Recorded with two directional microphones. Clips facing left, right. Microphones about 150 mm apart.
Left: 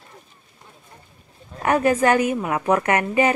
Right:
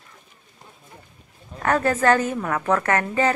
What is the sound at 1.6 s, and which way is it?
Speech, 15° left (ahead or behind).